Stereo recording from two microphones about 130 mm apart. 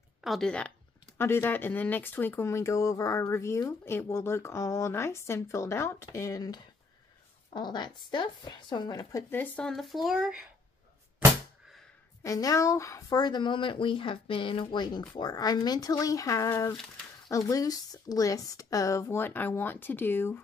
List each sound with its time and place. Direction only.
0.2 s speech: centre (ahead or behind); by 9.2 s 30° left (ahead or behind)
9.3 s speech: 15° left (ahead or behind)
9.7 s speech: centre (ahead or behind)
12.2 s speech: 25° left (ahead or behind)